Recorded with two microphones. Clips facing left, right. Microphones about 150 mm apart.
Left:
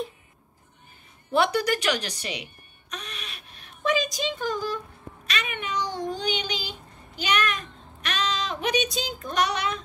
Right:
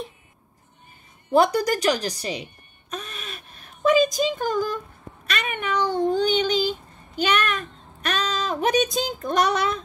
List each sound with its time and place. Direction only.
1.3 s a woman's voice: 40° right (ahead or behind)
5.2 s cat: 55° right (ahead or behind)